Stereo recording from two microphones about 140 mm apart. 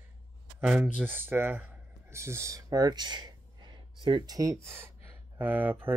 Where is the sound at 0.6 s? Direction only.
10° right (ahead or behind).